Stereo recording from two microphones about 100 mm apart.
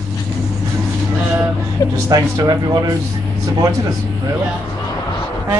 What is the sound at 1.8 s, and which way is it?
Speech, 35° left (ahead or behind).